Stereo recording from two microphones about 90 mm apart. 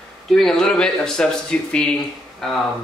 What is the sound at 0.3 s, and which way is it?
A man's voice, 5° left (ahead or behind).